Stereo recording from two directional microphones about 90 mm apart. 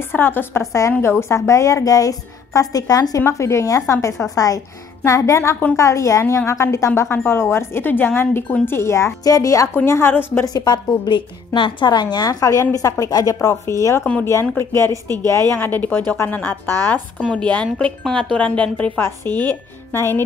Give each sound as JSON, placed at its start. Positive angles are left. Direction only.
{"t": 0.0, "sound": "a woman's voice", "side_deg": 25}
{"t": 9.8, "sound": "a woman's voice", "side_deg": 25}
{"t": 10.4, "sound": "a woman's voice", "side_deg": 45}
{"t": 15.5, "sound": "a woman's voice", "side_deg": 20}
{"t": 17.2, "sound": "speech", "side_deg": 10}
{"t": 18.9, "sound": "a woman's voice", "side_deg": 25}